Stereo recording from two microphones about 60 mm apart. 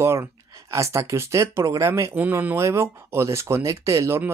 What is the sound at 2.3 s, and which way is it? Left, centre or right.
Speech, right.